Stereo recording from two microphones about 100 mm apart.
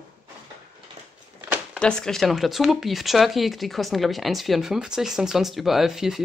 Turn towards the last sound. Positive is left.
turn(degrees=-5)  # may be behind; listen again after turning